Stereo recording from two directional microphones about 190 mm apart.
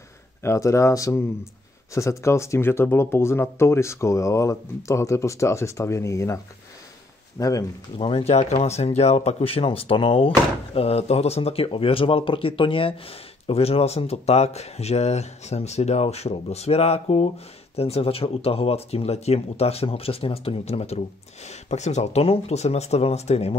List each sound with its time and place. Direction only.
0.4 s speech: 15° left (ahead or behind); by 23.6 s 35° left (ahead or behind)